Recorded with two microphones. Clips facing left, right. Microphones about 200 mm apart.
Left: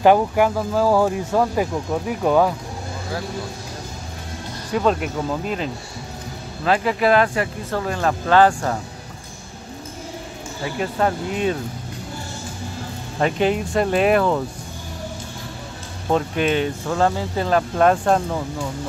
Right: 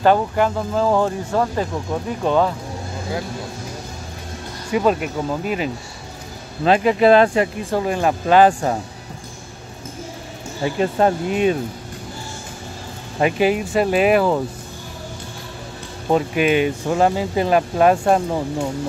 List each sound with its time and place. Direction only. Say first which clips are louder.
0.0 s speech: left 1 dB; 10° left (ahead or behind)
4.6 s speech: right 2 dB; 10° right (ahead or behind)
6.6 s speech: right 4 dB; 20° right (ahead or behind)
10.6 s speech: right 4 dB; 25° right (ahead or behind)
13.2 s speech: right 2 dB; 5° right (ahead or behind)
16.1 s speech: right 3 dB; 10° right (ahead or behind)